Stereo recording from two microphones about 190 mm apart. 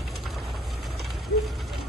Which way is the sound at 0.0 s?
Centre (ahead or behind).